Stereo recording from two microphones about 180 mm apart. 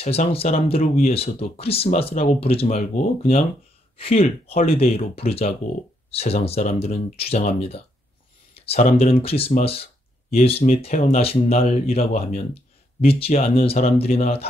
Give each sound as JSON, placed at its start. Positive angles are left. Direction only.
{"t": 0.0, "sound": "speech", "side_deg": 35}